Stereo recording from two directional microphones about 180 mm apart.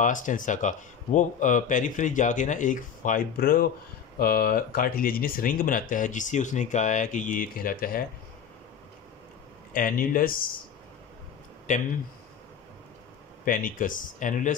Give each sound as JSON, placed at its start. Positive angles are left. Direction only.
{"t": 0.0, "sound": "speech", "side_deg": 45}
{"t": 9.8, "sound": "speech", "side_deg": 50}
{"t": 11.7, "sound": "speech", "side_deg": 45}
{"t": 13.5, "sound": "speech", "side_deg": 50}